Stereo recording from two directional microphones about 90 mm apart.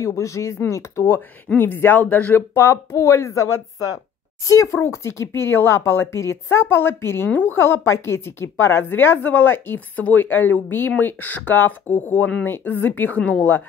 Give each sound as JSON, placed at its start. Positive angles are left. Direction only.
{"t": 0.0, "sound": "a woman's voice", "side_deg": 35}
{"t": 2.5, "sound": "a woman's voice", "side_deg": 30}